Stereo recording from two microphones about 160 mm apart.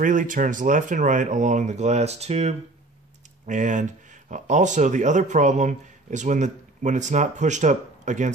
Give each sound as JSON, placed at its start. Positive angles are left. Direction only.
{"t": 0.0, "sound": "speech", "side_deg": -55}